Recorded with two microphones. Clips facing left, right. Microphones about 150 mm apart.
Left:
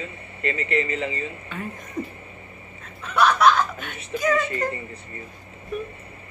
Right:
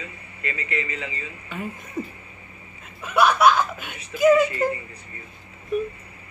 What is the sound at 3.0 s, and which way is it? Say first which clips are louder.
Snicker: right 1 dB; 10° right (ahead or behind).